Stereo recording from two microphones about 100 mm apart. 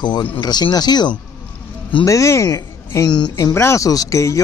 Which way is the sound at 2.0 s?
30° left (ahead or behind).